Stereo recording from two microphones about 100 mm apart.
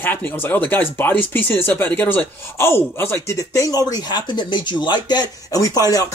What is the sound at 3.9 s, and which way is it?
Speech, 45° left (ahead or behind).